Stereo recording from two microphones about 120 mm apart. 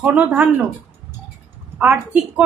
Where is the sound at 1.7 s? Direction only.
15° right (ahead or behind).